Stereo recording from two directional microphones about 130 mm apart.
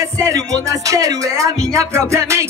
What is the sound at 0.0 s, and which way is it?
Music, 25° right (ahead or behind).